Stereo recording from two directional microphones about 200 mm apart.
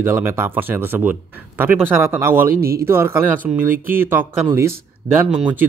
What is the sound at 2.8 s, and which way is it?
Speech, 10° right (ahead or behind).